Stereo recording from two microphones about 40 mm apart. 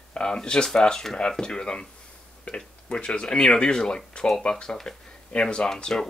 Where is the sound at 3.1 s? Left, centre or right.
Centre.